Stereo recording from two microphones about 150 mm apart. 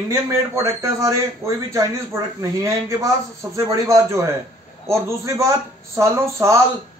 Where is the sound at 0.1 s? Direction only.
20° right (ahead or behind).